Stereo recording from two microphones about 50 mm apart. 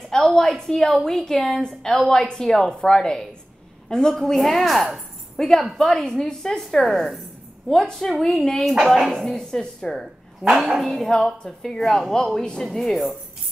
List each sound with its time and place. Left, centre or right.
0.1 s a woman's voice: centre
4.2 s a woman's voice: centre
6.6 s a woman's voice: centre
8.7 s speech: centre
9.1 s a woman's voice: centre
12.7 s speech: centre